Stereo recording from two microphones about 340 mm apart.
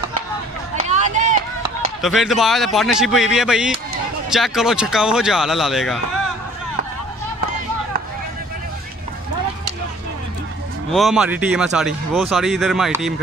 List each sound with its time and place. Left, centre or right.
0.8 s run: right
2.0 s speech: centre
10.9 s speech: centre